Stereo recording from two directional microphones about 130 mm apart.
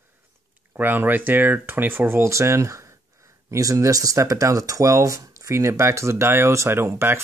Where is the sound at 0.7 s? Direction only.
15° right (ahead or behind).